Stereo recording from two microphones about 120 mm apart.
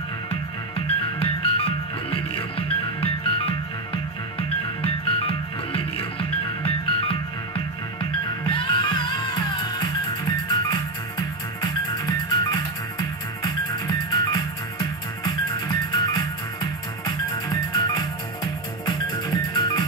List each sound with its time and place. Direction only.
0.3 s music: 50° left (ahead or behind); by 15.3 s 35° left (ahead or behind)
17.0 s music: 35° left (ahead or behind)